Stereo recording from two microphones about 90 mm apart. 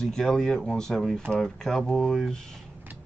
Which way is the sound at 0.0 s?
5° left (ahead or behind).